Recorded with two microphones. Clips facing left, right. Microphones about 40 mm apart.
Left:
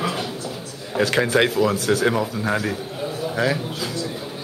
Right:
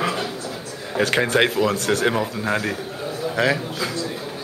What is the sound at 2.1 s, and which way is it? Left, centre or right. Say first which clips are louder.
Speech: even; right.